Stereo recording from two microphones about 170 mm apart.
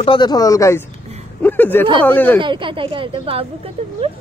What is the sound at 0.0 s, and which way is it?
Speech, 30° left (ahead or behind).